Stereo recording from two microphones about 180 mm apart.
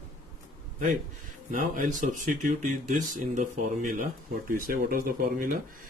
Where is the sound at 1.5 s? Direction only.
45° right (ahead or behind).